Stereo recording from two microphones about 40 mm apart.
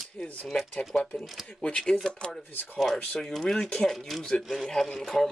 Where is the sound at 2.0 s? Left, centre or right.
Centre.